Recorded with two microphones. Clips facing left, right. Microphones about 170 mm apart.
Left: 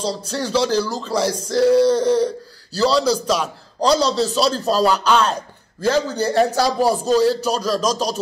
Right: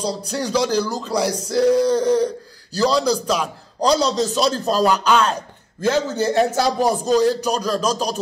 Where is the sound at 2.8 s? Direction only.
10° right (ahead or behind).